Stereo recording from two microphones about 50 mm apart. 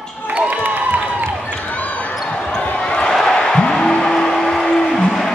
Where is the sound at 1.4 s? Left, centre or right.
Left.